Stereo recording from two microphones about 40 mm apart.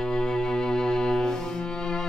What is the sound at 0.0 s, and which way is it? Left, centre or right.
Music, centre.